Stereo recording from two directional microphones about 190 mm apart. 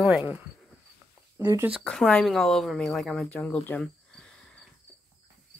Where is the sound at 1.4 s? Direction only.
15° right (ahead or behind).